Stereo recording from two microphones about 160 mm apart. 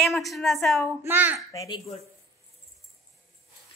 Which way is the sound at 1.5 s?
20° left (ahead or behind).